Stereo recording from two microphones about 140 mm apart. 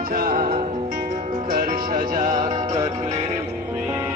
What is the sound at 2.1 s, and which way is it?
Music, 65° right (ahead or behind).